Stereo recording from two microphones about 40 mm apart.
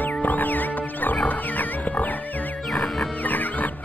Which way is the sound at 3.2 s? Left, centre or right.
Left.